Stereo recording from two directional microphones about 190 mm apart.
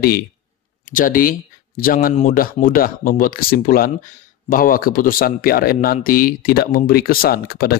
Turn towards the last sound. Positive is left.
turn(degrees=50)  # may be behind; listen again after turning